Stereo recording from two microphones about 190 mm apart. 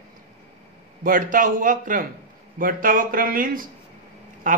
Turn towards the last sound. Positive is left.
turn(degrees=-45)  # may be behind; listen again after turning